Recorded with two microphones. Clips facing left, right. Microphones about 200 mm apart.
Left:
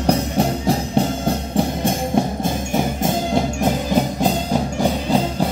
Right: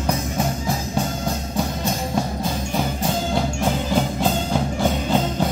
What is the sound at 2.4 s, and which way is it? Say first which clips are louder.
Music: left 3 dB; 20° left (ahead or behind).